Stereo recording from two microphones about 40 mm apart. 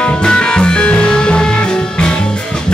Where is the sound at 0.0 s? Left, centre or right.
Left.